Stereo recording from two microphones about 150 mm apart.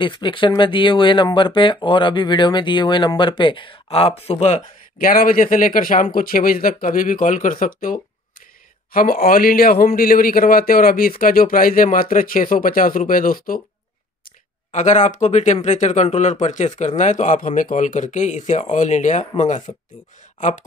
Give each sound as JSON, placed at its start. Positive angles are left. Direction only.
{"t": 0.0, "sound": "speech", "side_deg": 30}
{"t": 4.9, "sound": "speech", "side_deg": 65}
{"t": 14.7, "sound": "speech", "side_deg": 50}